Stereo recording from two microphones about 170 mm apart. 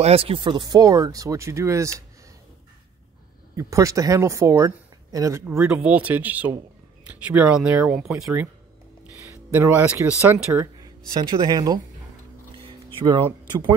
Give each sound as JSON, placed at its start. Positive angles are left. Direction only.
{"t": 0.0, "sound": "speech", "side_deg": -35}
{"t": 3.5, "sound": "speech", "side_deg": -20}
{"t": 9.5, "sound": "speech", "side_deg": -10}
{"t": 12.6, "sound": "a sound", "side_deg": -30}